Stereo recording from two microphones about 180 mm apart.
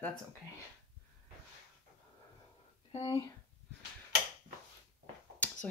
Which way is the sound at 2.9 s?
30° left (ahead or behind).